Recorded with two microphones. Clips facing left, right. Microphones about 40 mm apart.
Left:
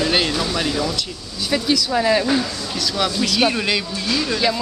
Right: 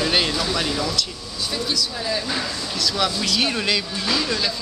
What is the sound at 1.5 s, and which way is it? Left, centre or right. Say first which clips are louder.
Speech: left 7 dB; left.